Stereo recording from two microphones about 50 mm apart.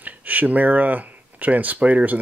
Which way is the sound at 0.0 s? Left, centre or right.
Right.